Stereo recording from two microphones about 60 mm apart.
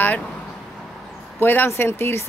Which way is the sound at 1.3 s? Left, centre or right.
Left.